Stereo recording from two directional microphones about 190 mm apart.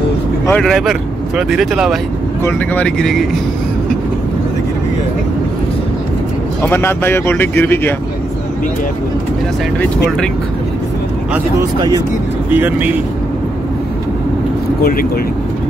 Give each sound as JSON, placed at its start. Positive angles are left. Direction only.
{"t": 0.5, "sound": "speech", "side_deg": 5}
{"t": 6.6, "sound": "speech", "side_deg": 10}
{"t": 9.8, "sound": "speech", "side_deg": 5}
{"t": 12.4, "sound": "speech", "side_deg": -10}
{"t": 14.8, "sound": "speech", "side_deg": 50}